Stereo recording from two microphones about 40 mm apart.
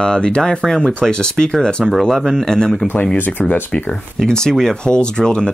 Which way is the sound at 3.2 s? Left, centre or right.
Left.